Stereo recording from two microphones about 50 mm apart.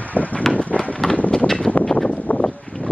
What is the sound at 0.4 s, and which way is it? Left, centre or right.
Run, left.